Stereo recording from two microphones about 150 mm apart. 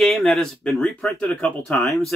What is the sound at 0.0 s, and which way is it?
Speech, centre (ahead or behind).